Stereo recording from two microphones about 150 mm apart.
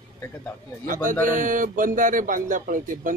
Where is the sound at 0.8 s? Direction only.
65° right (ahead or behind).